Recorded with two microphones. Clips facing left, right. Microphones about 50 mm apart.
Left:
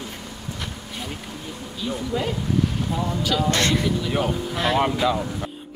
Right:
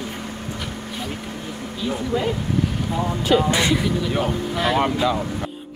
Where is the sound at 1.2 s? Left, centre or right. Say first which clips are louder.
Right 4 dB; right.